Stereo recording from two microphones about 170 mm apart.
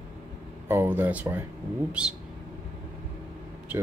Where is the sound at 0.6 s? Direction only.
15° right (ahead or behind).